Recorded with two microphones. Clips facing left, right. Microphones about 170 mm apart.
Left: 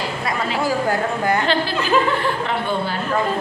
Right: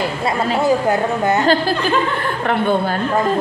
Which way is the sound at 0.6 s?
20° right (ahead or behind).